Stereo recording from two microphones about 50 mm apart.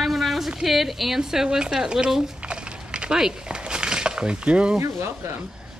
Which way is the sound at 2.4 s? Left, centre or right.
Right.